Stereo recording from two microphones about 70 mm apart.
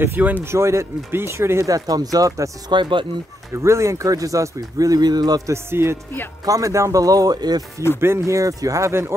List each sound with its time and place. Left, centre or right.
0.0 s speech: right
0.5 s speech: right
1.7 s speech: right
2.7 s speech: right
3.5 s speech: right
5.5 s speech: right
6.4 s speech: right
8.0 s speech: right